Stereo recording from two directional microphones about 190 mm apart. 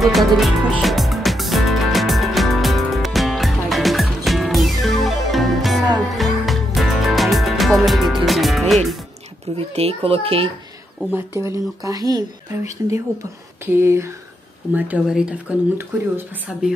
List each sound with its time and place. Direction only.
0.0 s music: centre (ahead or behind)
9.6 s speech: 30° right (ahead or behind)
11.1 s speech: 15° right (ahead or behind)